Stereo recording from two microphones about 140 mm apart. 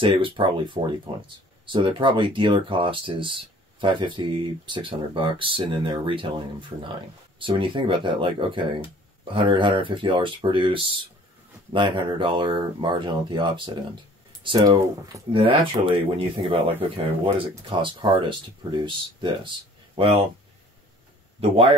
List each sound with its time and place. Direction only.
0.0 s speech: 35° right (ahead or behind)
15.3 s speech: 40° right (ahead or behind)
16.9 s speech: 40° right (ahead or behind)
21.4 s speech: 40° right (ahead or behind)